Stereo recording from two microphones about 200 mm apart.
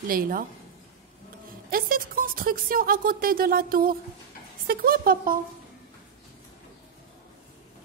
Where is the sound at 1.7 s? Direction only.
45° right (ahead or behind).